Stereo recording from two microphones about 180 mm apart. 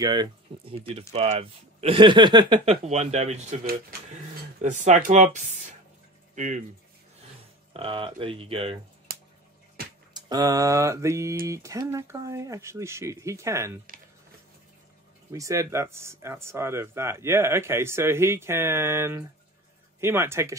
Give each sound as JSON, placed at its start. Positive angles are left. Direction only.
{"t": 0.0, "sound": "speech", "side_deg": -25}
{"t": 4.6, "sound": "speech", "side_deg": -45}
{"t": 7.7, "sound": "speech", "side_deg": -30}
{"t": 9.1, "sound": "a sound", "side_deg": -60}
{"t": 10.1, "sound": "speech", "side_deg": -20}
{"t": 15.3, "sound": "speech", "side_deg": -20}